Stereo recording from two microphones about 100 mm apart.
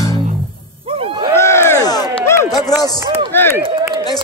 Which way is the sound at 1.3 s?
25° left (ahead or behind).